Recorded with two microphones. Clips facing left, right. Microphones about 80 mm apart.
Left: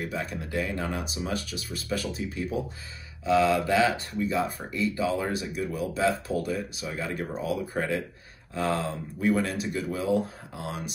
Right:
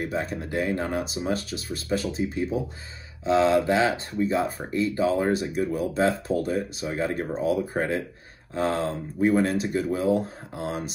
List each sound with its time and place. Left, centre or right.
0.0 s speech: right